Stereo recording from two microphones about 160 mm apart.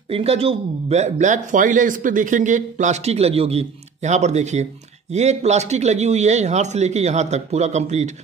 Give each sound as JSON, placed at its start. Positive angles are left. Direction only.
{"t": 0.1, "sound": "speech", "side_deg": -40}